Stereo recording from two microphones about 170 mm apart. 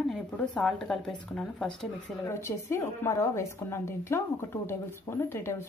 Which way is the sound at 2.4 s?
15° left (ahead or behind).